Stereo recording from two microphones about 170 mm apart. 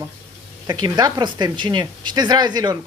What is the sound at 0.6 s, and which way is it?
Speech, 25° right (ahead or behind).